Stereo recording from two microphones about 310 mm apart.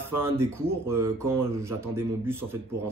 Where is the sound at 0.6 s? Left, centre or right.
Centre.